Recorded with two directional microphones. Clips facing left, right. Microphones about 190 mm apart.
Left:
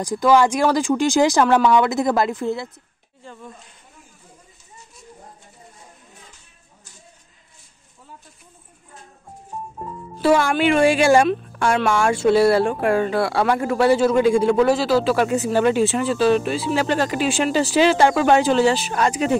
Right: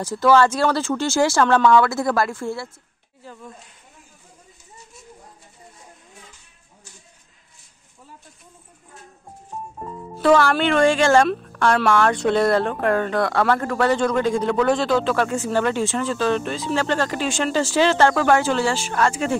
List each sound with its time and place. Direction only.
0.0 s speech: 15° left (ahead or behind)
3.2 s speech: 5° right (ahead or behind)
10.2 s speech: 5° left (ahead or behind)